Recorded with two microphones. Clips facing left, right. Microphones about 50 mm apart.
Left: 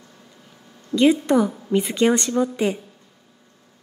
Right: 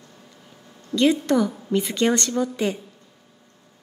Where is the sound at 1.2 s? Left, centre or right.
Centre.